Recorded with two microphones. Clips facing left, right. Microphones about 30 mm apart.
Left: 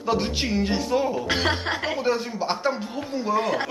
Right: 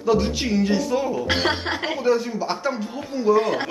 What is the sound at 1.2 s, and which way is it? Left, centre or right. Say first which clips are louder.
Speech: right 2 dB; centre.